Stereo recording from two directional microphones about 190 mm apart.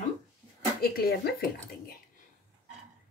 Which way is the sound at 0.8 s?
50° left (ahead or behind).